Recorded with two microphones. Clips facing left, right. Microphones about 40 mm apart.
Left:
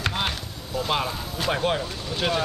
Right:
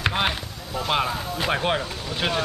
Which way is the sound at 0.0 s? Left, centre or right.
Right.